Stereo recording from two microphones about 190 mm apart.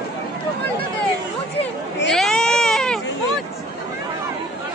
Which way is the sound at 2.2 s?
5° left (ahead or behind).